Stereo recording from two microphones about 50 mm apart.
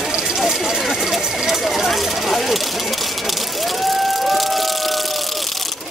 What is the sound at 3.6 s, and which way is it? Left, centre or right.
Vehicle, centre.